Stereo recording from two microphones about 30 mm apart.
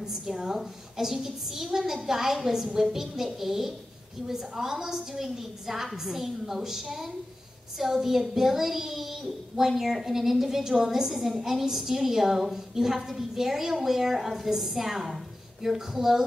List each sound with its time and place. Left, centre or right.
0.0 s a woman's voice: centre